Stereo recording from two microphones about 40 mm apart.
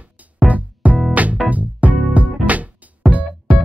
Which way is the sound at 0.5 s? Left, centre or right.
Right.